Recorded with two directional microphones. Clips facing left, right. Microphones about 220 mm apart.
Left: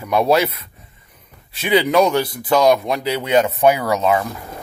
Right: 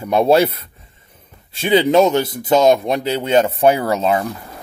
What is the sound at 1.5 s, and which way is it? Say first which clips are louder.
Speech: right 2 dB; 25° right (ahead or behind).